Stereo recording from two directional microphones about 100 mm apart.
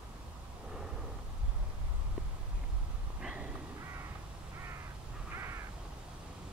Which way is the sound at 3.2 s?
10° right (ahead or behind).